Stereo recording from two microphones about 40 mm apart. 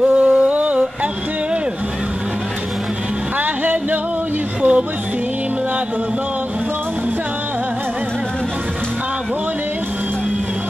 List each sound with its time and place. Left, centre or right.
0.0 s a sound: right
3.3 s music: right
4.6 s music: right